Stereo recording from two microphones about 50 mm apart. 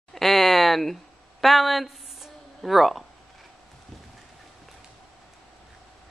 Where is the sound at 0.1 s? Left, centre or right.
Centre.